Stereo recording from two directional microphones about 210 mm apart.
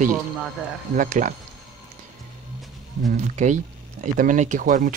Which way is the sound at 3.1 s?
35° right (ahead or behind).